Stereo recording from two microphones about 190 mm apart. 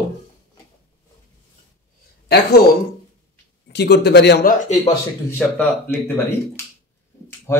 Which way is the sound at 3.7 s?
60° left (ahead or behind).